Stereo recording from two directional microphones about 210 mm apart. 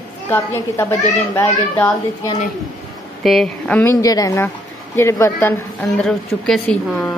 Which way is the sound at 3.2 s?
Centre (ahead or behind).